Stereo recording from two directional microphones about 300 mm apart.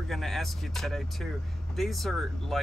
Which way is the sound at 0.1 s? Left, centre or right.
Centre.